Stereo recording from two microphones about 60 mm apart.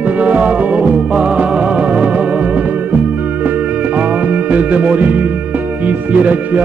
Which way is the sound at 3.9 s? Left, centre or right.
Right.